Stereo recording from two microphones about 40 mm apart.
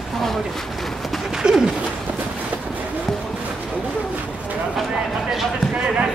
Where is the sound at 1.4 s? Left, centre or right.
Centre.